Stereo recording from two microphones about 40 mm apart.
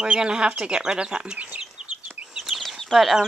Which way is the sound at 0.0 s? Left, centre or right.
Right.